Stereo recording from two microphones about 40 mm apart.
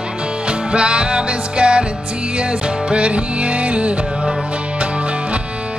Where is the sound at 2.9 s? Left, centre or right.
Right.